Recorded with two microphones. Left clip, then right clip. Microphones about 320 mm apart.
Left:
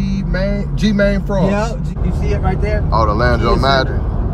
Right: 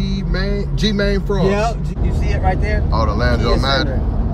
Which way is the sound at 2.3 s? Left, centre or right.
Right.